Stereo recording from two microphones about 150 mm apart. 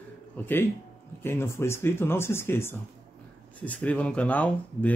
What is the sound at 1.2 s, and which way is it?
Speech, 15° left (ahead or behind).